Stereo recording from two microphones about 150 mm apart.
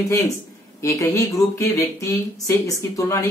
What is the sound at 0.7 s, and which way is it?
Speech, 20° left (ahead or behind).